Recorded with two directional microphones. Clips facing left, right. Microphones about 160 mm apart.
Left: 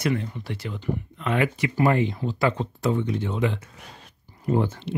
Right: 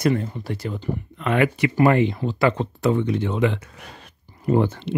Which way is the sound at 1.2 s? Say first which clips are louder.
Right 5 dB; 65° right (ahead or behind).